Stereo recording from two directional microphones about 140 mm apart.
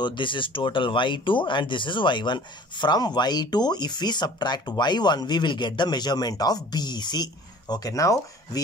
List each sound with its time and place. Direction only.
0.0 s speech: 35° left (ahead or behind)